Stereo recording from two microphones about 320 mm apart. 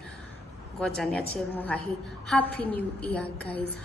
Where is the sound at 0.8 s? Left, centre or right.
Centre.